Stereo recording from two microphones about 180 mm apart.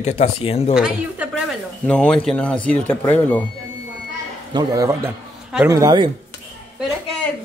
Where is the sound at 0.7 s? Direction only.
5° right (ahead or behind).